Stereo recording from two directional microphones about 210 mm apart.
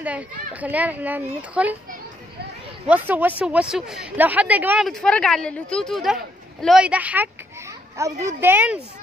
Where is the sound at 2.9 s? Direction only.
10° right (ahead or behind).